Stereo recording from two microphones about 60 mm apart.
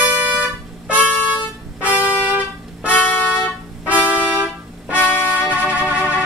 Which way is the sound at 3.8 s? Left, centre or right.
Right.